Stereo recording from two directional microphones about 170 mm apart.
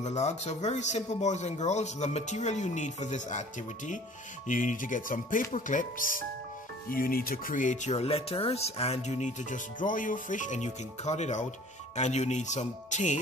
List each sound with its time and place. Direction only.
0.0 s speech: 40° left (ahead or behind)